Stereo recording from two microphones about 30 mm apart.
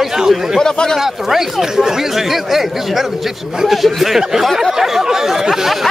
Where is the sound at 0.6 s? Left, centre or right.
Left.